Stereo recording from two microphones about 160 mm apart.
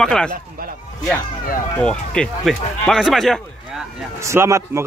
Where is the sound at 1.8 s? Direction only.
5° left (ahead or behind).